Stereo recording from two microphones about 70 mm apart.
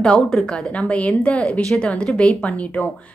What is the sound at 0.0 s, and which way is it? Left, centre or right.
A woman's voice, centre.